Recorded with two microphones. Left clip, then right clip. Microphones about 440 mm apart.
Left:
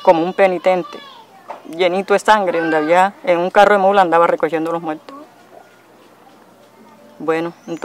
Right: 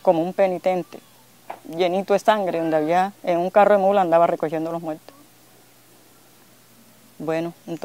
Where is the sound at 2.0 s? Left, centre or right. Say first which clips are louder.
Left 6 dB; right.